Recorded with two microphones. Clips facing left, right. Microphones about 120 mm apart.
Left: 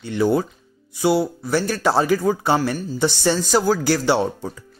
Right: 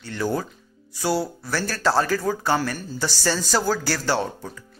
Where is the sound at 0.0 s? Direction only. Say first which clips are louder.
Left 7 dB; 20° left (ahead or behind).